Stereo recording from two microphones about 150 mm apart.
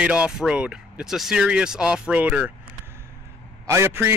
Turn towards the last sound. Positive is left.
turn(degrees=-15)  # may be behind; listen again after turning